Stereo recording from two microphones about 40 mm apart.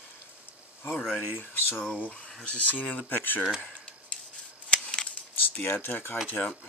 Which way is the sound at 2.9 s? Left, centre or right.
Left.